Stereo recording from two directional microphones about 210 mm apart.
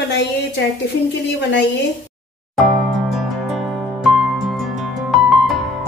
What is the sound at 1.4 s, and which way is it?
Speech, 55° left (ahead or behind).